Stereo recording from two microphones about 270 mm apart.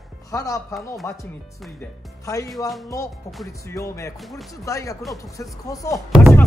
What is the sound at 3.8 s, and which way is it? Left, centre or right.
Speech, centre.